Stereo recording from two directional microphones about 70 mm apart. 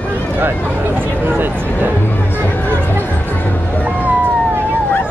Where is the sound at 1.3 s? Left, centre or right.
Right.